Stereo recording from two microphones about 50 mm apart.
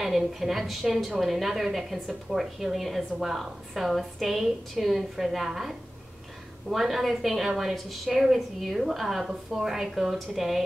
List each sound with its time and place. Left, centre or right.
0.0 s a woman's voice: centre